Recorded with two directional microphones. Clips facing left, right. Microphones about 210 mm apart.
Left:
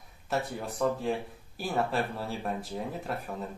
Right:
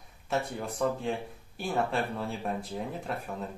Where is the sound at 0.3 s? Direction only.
Centre (ahead or behind).